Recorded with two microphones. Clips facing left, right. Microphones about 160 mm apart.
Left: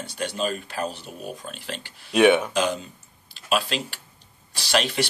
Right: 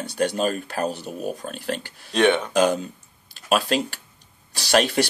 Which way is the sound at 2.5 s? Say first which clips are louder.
Right 5 dB; 45° right (ahead or behind).